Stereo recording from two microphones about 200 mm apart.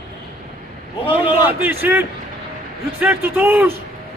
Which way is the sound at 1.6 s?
10° right (ahead or behind).